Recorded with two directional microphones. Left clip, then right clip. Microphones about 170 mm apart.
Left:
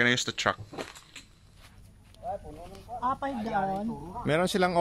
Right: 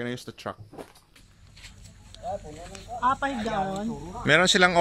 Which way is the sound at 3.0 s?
70° left (ahead or behind).